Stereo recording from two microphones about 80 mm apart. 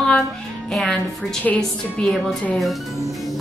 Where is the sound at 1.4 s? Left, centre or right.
Centre.